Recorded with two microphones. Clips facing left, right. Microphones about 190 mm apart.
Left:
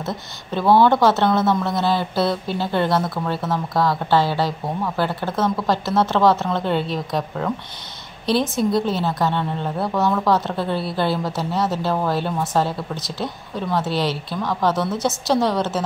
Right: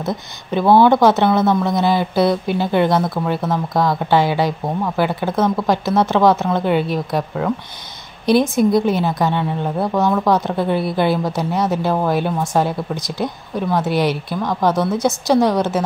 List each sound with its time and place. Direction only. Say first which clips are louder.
0.0 s speech: right 4 dB; 15° right (ahead or behind)